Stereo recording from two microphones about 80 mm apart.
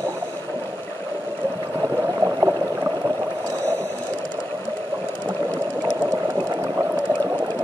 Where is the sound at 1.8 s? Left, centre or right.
Right.